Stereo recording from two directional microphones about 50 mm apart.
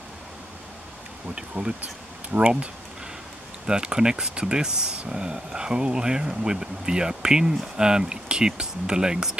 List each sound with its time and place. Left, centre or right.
1.3 s speech: centre